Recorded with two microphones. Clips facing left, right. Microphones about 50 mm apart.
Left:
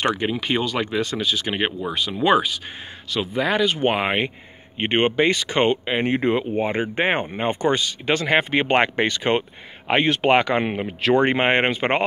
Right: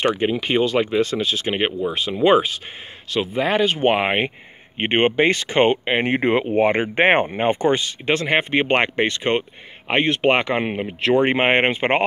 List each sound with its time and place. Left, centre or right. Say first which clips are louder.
0.0 s speech: right 2 dB; right
2.0 s speech: right 3 dB; right
6.0 s speech: even; right
8.5 s speech: even; centre